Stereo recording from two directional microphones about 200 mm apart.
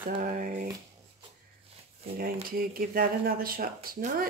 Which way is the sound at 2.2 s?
45° right (ahead or behind).